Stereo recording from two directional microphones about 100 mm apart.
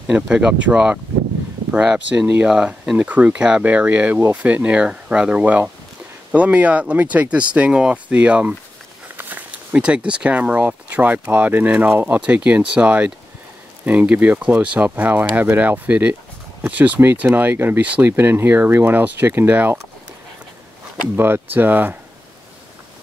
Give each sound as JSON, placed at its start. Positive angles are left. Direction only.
{"t": 0.1, "sound": "speech", "side_deg": -10}
{"t": 21.2, "sound": "speech", "side_deg": -20}